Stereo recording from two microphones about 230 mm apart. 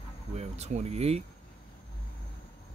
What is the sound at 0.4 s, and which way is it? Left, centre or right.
Speech, right.